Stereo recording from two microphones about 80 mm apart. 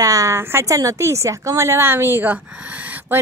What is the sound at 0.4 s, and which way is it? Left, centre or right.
Speech, right.